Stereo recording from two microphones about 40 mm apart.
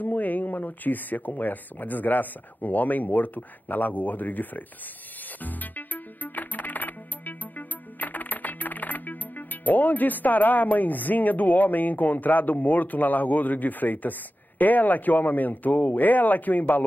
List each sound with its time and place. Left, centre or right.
0.0 s speech: left
5.4 s music: left
14.6 s speech: left